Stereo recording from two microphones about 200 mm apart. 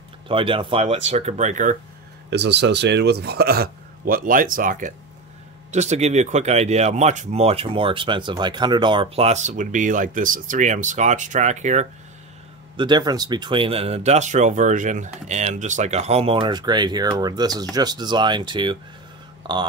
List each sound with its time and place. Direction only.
0.3 s speech: 25° right (ahead or behind)
2.2 s a man's voice: 60° right (ahead or behind); by 11.9 s 35° right (ahead or behind)
12.7 s speech: 20° right (ahead or behind)